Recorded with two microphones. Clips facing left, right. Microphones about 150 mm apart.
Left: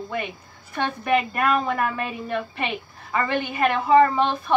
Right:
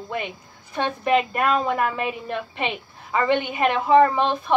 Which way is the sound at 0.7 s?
20° right (ahead or behind).